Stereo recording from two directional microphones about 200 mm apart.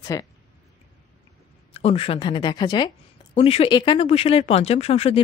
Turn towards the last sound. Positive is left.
turn(degrees=30)  # may be behind; listen again after turning